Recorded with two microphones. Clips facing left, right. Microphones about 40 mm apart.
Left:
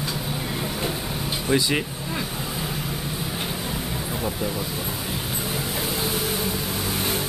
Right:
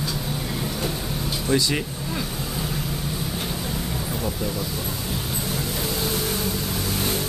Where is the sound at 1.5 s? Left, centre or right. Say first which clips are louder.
Left 1 dB; centre.